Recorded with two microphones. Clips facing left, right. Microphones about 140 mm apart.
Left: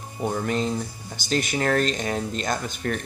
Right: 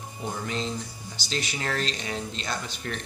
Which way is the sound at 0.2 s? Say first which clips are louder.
Left 7 dB; 50° left (ahead or behind).